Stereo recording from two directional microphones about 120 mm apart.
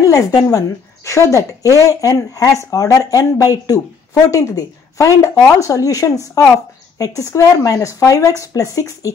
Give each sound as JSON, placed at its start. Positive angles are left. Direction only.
{"t": 0.0, "sound": "speech", "side_deg": 25}